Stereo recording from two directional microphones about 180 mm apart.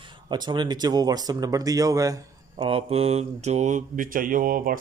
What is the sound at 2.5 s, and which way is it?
Mantra, 30° right (ahead or behind).